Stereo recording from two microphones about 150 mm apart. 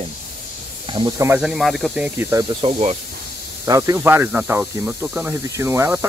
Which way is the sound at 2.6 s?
45° right (ahead or behind).